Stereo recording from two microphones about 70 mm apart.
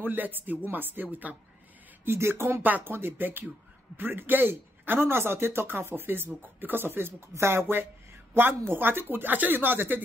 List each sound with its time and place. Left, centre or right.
0.0 s speech: right
2.0 s a man's voice: right